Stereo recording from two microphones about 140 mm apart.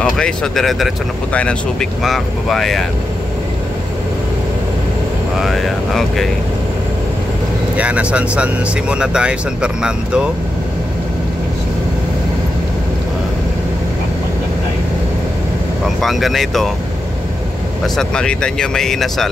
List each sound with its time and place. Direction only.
0.0 s speech: 5° left (ahead or behind)
5.4 s speech: centre (ahead or behind)
7.7 s speech: 10° right (ahead or behind)
16.0 s speech: centre (ahead or behind)
17.9 s speech: 5° left (ahead or behind)